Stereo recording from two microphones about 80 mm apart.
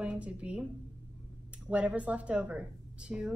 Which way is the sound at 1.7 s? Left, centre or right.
Centre.